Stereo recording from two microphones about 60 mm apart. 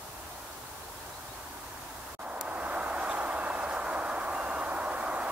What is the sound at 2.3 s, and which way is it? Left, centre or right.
Vehicle, right.